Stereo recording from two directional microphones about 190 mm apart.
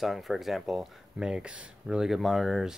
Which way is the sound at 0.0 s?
Centre (ahead or behind).